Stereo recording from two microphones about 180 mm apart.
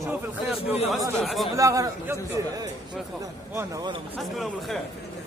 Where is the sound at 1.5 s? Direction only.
20° right (ahead or behind).